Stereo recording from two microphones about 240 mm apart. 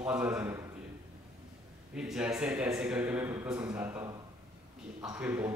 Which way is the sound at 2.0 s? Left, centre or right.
Centre.